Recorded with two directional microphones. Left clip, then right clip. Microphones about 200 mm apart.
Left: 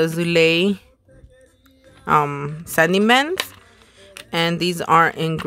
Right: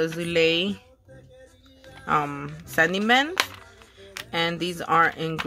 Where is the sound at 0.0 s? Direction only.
50° left (ahead or behind).